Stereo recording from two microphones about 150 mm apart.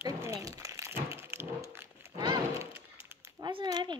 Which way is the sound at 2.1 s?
25° right (ahead or behind).